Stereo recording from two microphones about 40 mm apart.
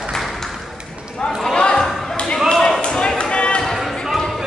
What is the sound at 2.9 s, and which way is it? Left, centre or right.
Basketball bounce, centre.